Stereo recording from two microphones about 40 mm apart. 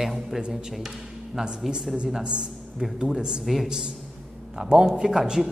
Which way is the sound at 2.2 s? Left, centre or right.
Right.